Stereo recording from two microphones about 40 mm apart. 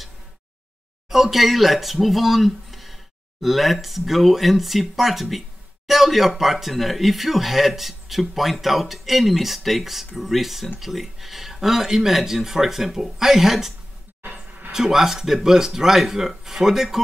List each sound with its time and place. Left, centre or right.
1.1 s speech: centre
14.2 s a sound: right
14.7 s speech: centre